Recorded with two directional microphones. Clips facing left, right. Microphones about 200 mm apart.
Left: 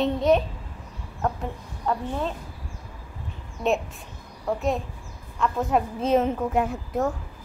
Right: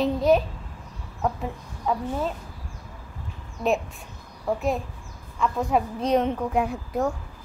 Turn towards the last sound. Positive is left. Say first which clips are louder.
# even
turn(degrees=0)  # may be behind; listen again after turning